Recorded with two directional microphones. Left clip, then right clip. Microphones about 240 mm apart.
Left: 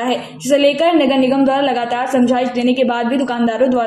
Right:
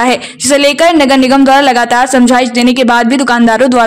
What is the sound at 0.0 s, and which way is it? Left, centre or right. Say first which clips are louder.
A woman's voice: right 9 dB; right.